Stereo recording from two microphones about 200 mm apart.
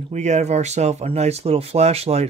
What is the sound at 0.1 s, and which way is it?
Speech, 35° right (ahead or behind).